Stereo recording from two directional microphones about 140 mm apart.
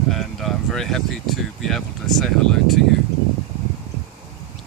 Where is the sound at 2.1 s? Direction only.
Centre (ahead or behind).